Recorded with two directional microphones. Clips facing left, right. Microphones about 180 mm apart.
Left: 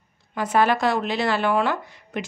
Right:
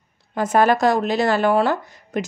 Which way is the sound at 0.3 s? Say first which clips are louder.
Right 3 dB; 45° right (ahead or behind).